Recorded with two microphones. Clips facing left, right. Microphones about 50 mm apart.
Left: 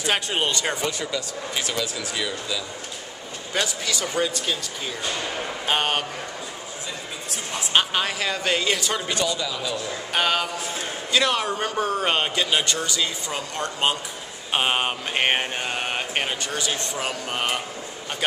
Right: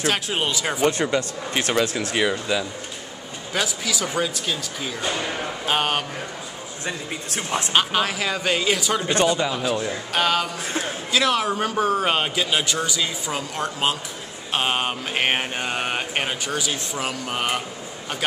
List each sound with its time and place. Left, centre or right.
0.0 s mantra: centre
0.8 s speech: right
3.5 s mantra: centre
7.7 s mantra: centre
9.1 s speech: right
10.1 s mantra: centre
14.5 s mantra: centre